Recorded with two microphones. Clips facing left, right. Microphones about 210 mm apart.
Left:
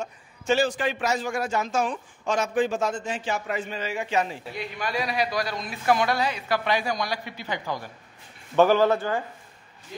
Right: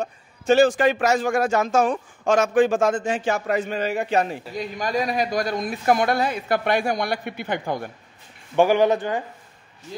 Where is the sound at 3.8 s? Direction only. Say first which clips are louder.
Right 5 dB; 60° right (ahead or behind).